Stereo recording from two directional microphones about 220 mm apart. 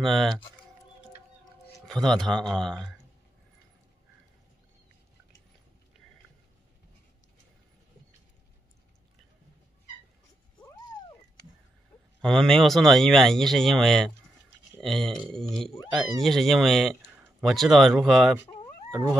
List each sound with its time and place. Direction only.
0.0 s speech: centre (ahead or behind)
1.9 s speech: centre (ahead or behind)
10.6 s cat: 20° left (ahead or behind)
12.2 s speech: centre (ahead or behind)
18.9 s howl: 5° right (ahead or behind)